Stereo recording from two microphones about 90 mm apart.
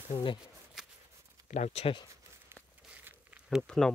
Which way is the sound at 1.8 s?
90° left.